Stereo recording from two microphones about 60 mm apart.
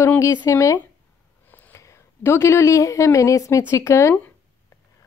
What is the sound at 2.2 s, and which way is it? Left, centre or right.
A woman's voice, left.